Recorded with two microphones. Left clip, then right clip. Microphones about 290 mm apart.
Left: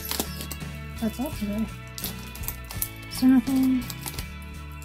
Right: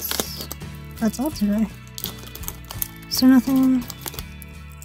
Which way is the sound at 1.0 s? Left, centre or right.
Right.